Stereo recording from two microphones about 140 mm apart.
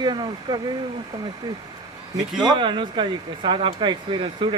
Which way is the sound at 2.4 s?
35° right (ahead or behind).